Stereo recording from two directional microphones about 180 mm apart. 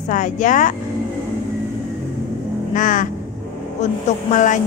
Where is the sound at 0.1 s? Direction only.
45° left (ahead or behind).